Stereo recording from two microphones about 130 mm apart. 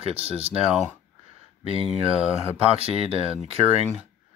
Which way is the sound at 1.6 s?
45° right (ahead or behind).